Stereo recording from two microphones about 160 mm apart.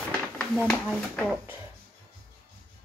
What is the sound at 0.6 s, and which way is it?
Speech, 5° left (ahead or behind).